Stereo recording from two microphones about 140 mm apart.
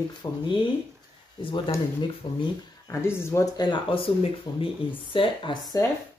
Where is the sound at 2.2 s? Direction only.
35° left (ahead or behind).